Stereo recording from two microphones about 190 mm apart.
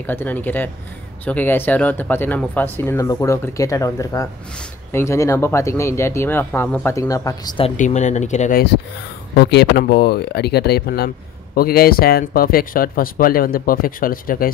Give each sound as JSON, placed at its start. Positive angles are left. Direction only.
{"t": 0.0, "sound": "speech", "side_deg": 10}
{"t": 7.7, "sound": "speech", "side_deg": 40}
{"t": 9.3, "sound": "speech", "side_deg": 60}